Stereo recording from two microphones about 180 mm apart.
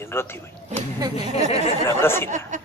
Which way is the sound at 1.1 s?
35° left (ahead or behind).